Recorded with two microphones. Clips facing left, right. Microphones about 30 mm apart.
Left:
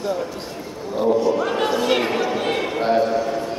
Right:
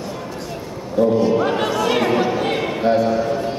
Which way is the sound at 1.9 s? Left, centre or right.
Centre.